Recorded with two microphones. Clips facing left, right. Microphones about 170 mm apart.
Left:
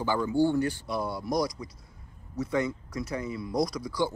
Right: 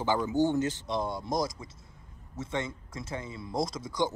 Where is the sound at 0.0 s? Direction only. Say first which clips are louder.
Left 1 dB; 20° right (ahead or behind).